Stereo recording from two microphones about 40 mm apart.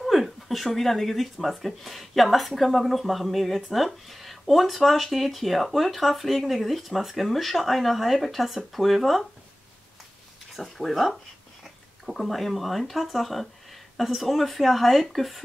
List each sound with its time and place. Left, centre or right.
0.0 s speech: centre
10.5 s speech: centre